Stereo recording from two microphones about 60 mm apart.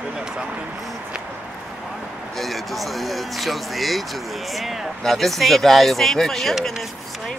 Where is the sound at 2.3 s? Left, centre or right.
Centre.